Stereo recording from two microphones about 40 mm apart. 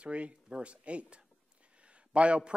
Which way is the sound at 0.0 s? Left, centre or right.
Right.